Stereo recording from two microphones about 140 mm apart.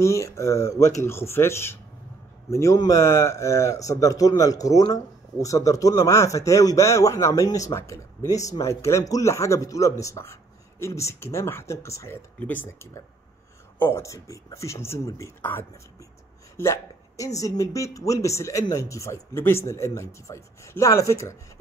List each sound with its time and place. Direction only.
0.0 s a man's voice: 20° left (ahead or behind)
16.5 s hiccup: 20° left (ahead or behind)
17.4 s a man's voice: 25° left (ahead or behind)